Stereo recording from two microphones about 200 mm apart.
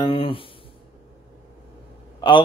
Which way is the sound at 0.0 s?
25° left (ahead or behind).